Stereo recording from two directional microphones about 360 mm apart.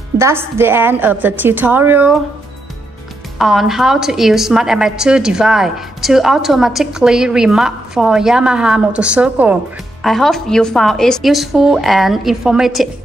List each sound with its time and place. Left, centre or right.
0.2 s a woman's voice: centre
3.3 s a woman's voice: centre